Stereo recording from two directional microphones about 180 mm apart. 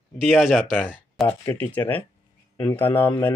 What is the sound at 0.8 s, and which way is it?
Speech, 10° left (ahead or behind).